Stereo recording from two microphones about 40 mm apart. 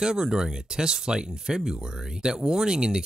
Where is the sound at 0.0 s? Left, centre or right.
Centre.